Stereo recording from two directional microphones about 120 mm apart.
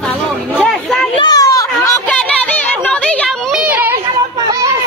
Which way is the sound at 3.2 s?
10° right (ahead or behind).